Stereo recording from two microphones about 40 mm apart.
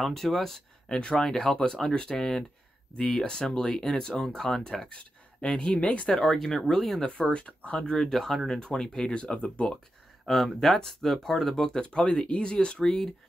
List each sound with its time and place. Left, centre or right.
0.0 s speech: centre
4.8 s speech: left
6.0 s speech: centre
7.2 s speech: left
7.9 s speech: centre
8.5 s speech: centre
10.2 s speech: centre; by 12.5 s left
12.5 s speech: centre